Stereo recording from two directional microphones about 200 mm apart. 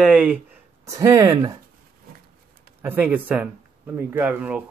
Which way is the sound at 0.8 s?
15° right (ahead or behind).